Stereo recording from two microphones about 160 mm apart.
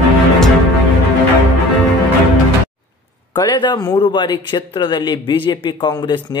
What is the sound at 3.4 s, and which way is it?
Speech, 30° left (ahead or behind).